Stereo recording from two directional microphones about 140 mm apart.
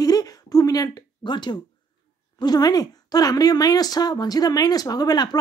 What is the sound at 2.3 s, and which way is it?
Speech, 30° left (ahead or behind).